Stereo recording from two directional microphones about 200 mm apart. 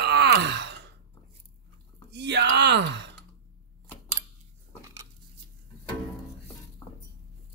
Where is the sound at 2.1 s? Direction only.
60° right (ahead or behind).